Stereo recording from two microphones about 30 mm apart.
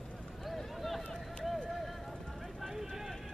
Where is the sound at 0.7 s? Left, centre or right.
Centre.